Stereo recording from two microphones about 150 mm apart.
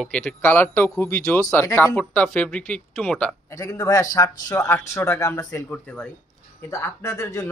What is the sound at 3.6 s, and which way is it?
A man's voice, 20° left (ahead or behind).